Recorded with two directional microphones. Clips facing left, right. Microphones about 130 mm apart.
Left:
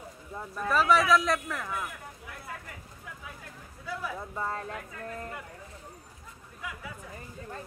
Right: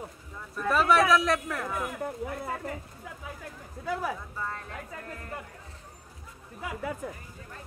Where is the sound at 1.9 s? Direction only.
45° right (ahead or behind).